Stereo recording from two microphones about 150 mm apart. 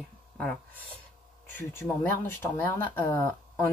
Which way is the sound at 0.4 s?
10° left (ahead or behind).